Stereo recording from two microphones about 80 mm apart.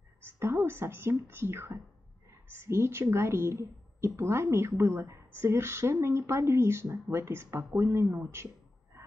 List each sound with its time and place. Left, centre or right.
0.2 s a woman's voice: right